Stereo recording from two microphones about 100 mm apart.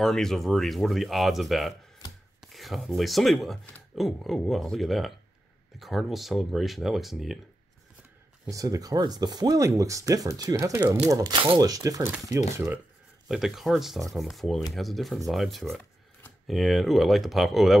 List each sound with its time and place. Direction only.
0.0 s speech: 5° left (ahead or behind)
8.5 s speech: 35° right (ahead or behind)
12.3 s speech: 25° right (ahead or behind)
13.3 s speech: 5° right (ahead or behind)